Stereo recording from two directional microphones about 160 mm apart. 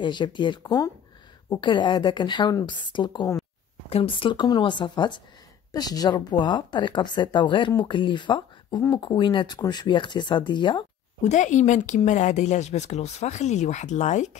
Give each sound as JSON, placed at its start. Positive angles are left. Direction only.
{"t": 0.0, "sound": "a woman's voice", "side_deg": 30}
{"t": 11.2, "sound": "speech", "side_deg": 50}